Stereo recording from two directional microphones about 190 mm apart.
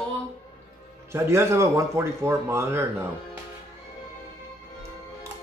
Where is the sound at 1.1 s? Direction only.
15° right (ahead or behind).